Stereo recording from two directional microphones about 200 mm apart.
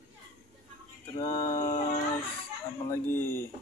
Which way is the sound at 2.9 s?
10° left (ahead or behind).